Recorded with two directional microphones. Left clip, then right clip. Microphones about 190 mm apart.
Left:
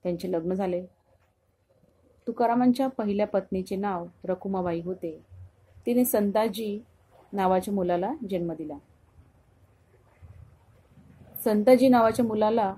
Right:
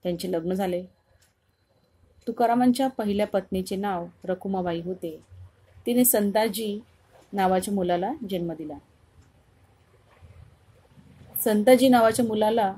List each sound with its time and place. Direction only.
0.0 s speech: 15° right (ahead or behind)
2.2 s speech: 15° right (ahead or behind)
11.4 s speech: 15° right (ahead or behind)